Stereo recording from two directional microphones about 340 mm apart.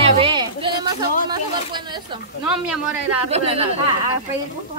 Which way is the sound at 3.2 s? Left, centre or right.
Centre.